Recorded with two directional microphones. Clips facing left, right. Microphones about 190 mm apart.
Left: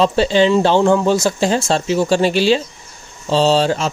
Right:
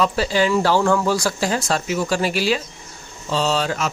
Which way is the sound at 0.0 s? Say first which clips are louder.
Left 6 dB; 25° left (ahead or behind).